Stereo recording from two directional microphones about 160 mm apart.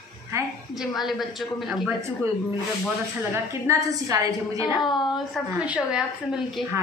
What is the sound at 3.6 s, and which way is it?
A woman's voice, 20° right (ahead or behind).